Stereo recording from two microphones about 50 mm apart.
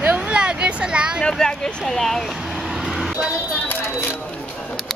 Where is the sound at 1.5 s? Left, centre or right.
Centre.